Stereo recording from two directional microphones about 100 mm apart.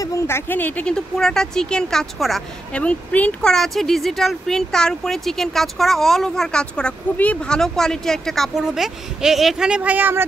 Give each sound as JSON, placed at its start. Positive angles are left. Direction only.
{"t": 0.0, "sound": "a sound", "side_deg": 35}
{"t": 0.5, "sound": "speech", "side_deg": 15}
{"t": 2.7, "sound": "speech", "side_deg": 15}
{"t": 3.5, "sound": "speech", "side_deg": 5}